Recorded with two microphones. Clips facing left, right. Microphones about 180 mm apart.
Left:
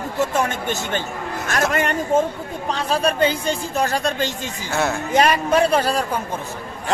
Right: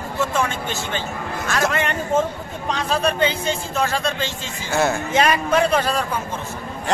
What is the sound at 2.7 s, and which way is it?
Speech, 35° left (ahead or behind).